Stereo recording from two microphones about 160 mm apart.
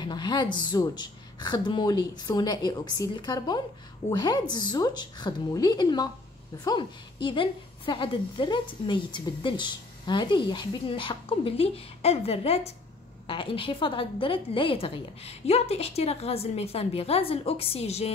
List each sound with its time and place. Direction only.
0.0 s a woman's voice: 25° left (ahead or behind)